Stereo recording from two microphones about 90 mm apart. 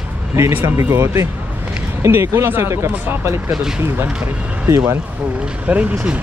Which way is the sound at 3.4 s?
10° right (ahead or behind).